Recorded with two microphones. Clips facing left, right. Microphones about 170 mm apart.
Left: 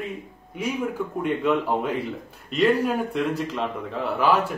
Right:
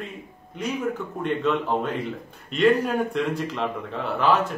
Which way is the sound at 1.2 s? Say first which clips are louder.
Left 1 dB; 10° left (ahead or behind).